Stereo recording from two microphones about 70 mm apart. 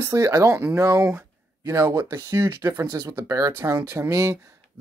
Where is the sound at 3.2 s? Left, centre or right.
Right.